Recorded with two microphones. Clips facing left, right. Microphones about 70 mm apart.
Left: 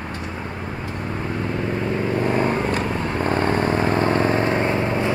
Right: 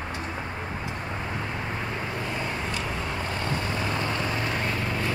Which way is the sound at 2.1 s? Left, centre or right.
Left.